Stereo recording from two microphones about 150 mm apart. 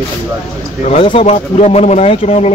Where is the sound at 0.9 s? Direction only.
35° left (ahead or behind).